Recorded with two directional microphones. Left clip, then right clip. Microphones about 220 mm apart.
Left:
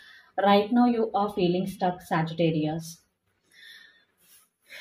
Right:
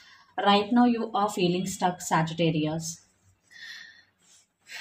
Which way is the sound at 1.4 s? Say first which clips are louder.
Even; 25° right (ahead or behind).